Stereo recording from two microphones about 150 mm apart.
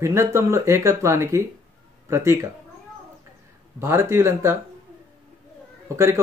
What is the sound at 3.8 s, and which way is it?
Speech, 15° right (ahead or behind).